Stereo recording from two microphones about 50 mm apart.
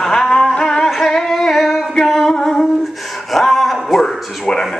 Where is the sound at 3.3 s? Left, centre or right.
Centre.